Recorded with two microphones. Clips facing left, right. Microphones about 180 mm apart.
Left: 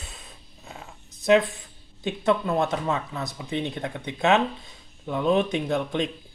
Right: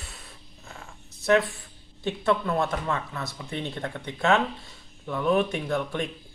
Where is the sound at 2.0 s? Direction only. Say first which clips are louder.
Left 1 dB; 20° left (ahead or behind).